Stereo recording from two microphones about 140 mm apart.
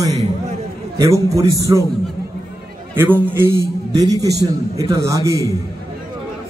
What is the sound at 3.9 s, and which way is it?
A man's voice, 25° right (ahead or behind).